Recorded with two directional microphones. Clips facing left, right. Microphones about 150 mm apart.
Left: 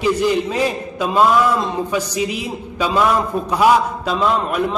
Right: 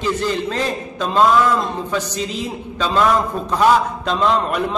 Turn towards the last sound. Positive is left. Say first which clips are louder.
# even
turn(degrees=5)  # may be behind; listen again after turning